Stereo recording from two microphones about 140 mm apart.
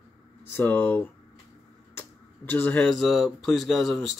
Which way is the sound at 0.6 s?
15° left (ahead or behind).